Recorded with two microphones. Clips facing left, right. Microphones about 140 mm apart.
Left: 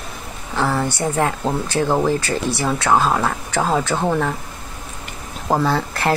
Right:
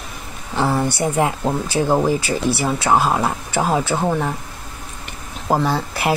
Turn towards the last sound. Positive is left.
turn(degrees=-10)  # may be behind; listen again after turning